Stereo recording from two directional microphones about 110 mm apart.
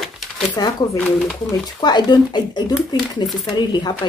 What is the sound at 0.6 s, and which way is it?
Speech, 40° left (ahead or behind).